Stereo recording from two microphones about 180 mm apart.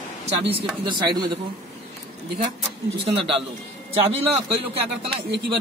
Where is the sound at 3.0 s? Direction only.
30° right (ahead or behind).